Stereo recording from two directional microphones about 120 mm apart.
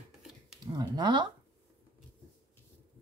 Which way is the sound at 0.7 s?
35° right (ahead or behind).